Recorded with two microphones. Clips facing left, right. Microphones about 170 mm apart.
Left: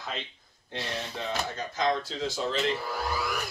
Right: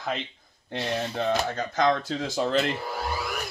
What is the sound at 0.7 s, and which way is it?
Speech, 60° right (ahead or behind).